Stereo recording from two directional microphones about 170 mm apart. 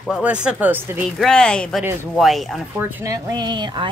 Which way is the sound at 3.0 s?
20° right (ahead or behind).